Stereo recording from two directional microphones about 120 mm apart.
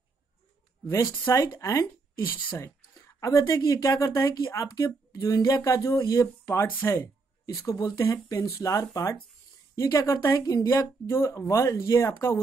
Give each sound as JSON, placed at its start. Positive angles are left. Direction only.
{"t": 0.8, "sound": "speech", "side_deg": 25}
{"t": 3.2, "sound": "speech", "side_deg": 25}
{"t": 10.4, "sound": "speech", "side_deg": 30}
{"t": 10.7, "sound": "speech", "side_deg": 20}